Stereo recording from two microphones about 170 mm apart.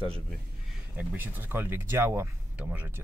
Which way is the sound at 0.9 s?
10° right (ahead or behind).